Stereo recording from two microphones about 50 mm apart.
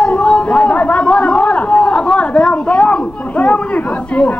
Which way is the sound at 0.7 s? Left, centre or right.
Left.